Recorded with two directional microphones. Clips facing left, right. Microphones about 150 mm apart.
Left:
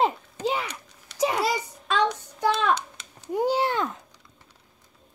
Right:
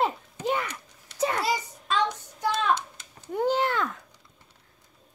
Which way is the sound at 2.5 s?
70° left (ahead or behind).